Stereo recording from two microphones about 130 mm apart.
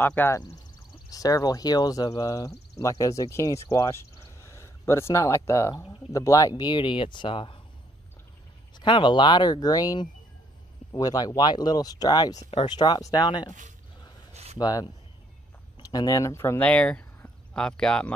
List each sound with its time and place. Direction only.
0.0 s speech: 15° left (ahead or behind)
1.1 s speech: 30° left (ahead or behind)
8.7 s speech: 40° left (ahead or behind)
12.4 s speech: 50° left (ahead or behind)
12.6 s speech: 35° left (ahead or behind)
14.3 s a sound: 55° right (ahead or behind)
14.6 s speech: 30° left (ahead or behind)
15.9 s speech: 25° left (ahead or behind)
16.5 s speech: 10° left (ahead or behind)